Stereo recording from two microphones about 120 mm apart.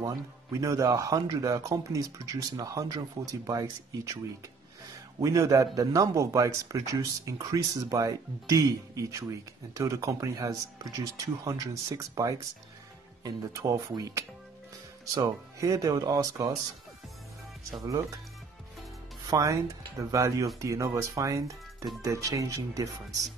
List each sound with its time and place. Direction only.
0.0 s a man's voice: 25° right (ahead or behind)
5.2 s a man's voice: 25° right (ahead or behind)
19.3 s a man's voice: 30° right (ahead or behind)